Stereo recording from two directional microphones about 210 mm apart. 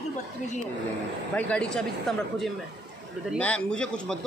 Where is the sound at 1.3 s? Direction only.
5° left (ahead or behind).